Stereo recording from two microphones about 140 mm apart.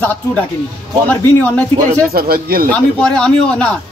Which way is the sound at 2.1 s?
90° right.